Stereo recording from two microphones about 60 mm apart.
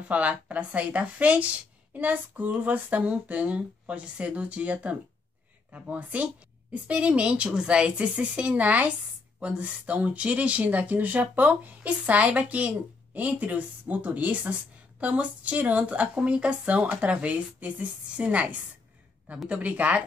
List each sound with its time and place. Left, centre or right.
0.1 s speech: right